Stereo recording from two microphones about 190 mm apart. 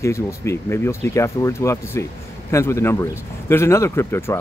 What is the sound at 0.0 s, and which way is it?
Speech, 15° left (ahead or behind).